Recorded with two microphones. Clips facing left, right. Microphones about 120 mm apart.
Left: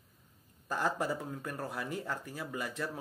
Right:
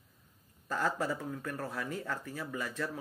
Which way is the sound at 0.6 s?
15° left (ahead or behind).